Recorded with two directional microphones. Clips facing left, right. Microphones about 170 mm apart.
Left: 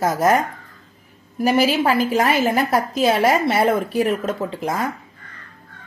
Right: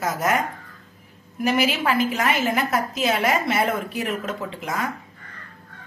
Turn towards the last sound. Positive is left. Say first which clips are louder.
# left 5 dB
turn(degrees=35)  # may be behind; listen again after turning